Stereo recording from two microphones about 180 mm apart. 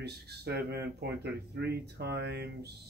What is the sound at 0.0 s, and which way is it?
Speech, 65° right (ahead or behind).